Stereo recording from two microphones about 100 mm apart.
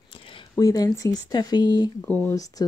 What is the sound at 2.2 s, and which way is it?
Speech, 35° left (ahead or behind).